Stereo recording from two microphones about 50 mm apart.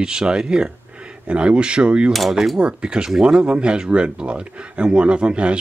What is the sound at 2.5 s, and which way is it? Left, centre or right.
Speech, centre.